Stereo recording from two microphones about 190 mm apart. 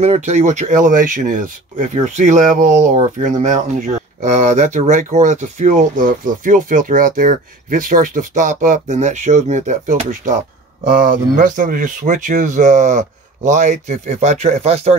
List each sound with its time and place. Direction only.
0.0 s speech: 35° right (ahead or behind)